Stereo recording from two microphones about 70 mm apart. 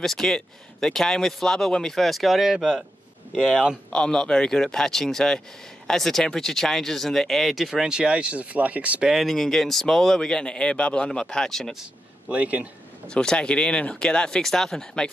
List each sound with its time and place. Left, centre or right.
0.0 s speech: centre
3.9 s speech: centre
9.1 s speech: centre
12.3 s a man's voice: centre
13.1 s speech: centre